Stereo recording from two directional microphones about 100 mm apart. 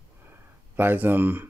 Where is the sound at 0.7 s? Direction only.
20° right (ahead or behind).